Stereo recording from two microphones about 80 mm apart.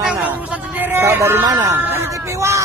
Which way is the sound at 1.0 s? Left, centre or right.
Right.